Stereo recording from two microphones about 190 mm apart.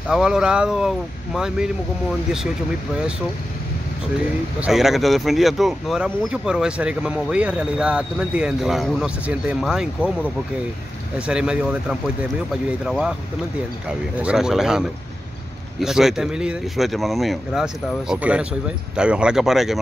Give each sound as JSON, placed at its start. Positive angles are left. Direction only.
{"t": 0.1, "sound": "speech", "side_deg": -5}
{"t": 4.6, "sound": "speech", "side_deg": -5}
{"t": 11.1, "sound": "speech", "side_deg": -5}